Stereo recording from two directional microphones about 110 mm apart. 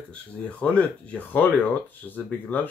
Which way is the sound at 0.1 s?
10° left (ahead or behind).